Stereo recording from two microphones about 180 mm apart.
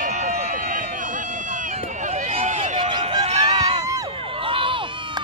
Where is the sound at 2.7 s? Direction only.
25° right (ahead or behind).